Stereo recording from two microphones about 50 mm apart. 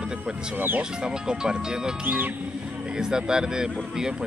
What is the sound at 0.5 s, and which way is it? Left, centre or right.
Speech, right.